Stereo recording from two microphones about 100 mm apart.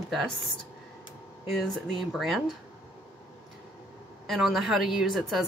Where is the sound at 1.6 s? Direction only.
Centre (ahead or behind).